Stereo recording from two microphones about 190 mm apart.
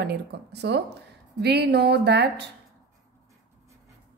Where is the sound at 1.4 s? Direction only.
60° right (ahead or behind).